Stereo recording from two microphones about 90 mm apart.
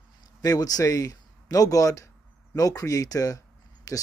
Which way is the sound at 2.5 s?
40° left (ahead or behind).